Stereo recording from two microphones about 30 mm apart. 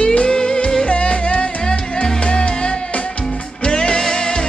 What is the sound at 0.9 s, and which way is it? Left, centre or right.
Music, left.